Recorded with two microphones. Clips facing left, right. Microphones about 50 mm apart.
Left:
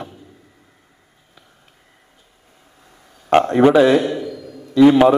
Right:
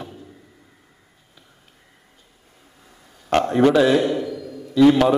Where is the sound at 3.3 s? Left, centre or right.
Left.